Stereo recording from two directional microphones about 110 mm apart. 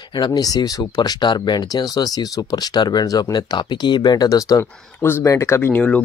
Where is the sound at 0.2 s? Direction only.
35° left (ahead or behind).